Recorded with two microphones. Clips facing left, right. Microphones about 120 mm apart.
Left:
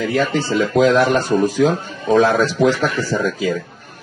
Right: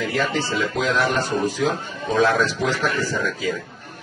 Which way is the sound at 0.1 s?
50° left (ahead or behind).